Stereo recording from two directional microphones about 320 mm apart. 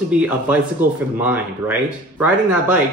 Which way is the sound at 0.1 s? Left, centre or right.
Centre.